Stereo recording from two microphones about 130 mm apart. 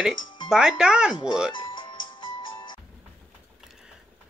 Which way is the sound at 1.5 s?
40° left (ahead or behind).